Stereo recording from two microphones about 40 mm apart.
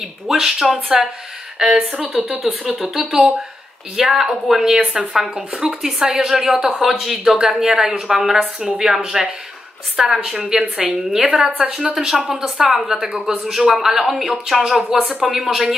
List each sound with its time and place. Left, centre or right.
0.3 s a woman's voice: centre
4.6 s a woman's voice: centre
7.3 s a woman's voice: right
10.6 s a woman's voice: right
11.1 s a woman's voice: centre